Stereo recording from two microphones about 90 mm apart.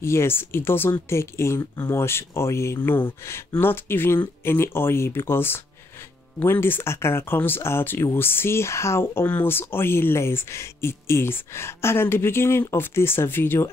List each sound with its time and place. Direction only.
0.0 s speech: 30° left (ahead or behind)